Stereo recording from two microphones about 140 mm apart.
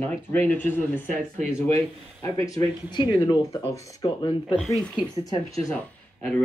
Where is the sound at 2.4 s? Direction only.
30° left (ahead or behind).